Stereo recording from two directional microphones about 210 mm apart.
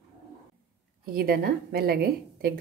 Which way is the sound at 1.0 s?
45° right (ahead or behind).